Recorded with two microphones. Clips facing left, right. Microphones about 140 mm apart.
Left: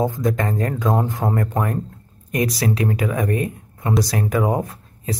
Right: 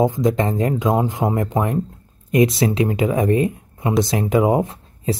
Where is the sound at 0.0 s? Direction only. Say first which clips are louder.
Right 3 dB; 20° right (ahead or behind).